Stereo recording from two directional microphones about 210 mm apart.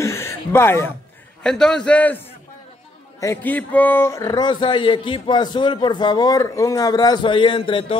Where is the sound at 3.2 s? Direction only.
10° left (ahead or behind).